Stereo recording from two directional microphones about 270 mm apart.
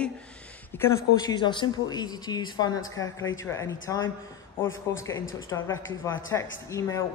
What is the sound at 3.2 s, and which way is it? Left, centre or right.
Speech, left.